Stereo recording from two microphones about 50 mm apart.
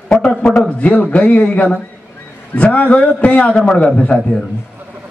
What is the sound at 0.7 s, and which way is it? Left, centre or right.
A man's voice, left.